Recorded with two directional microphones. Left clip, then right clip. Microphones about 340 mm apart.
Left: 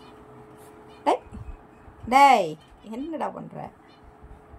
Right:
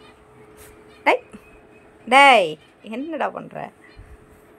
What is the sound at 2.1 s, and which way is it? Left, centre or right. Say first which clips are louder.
Speech: right 4 dB; centre.